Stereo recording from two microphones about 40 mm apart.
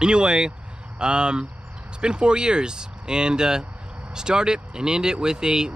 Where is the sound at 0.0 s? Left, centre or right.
Right.